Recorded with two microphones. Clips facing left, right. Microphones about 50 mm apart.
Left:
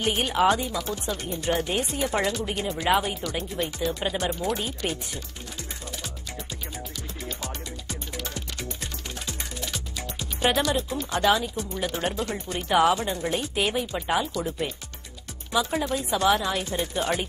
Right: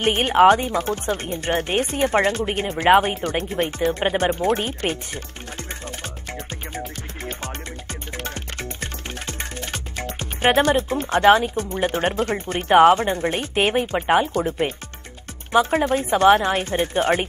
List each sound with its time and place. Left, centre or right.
0.0 s speech: right
6.3 s music: right
9.2 s speech: right